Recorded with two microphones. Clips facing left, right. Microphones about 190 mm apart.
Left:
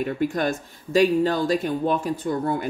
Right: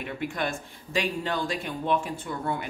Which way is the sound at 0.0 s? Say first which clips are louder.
Left 7 dB; 40° left (ahead or behind).